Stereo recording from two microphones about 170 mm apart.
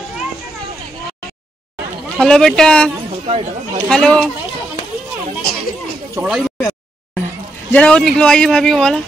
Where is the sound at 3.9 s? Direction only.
5° left (ahead or behind).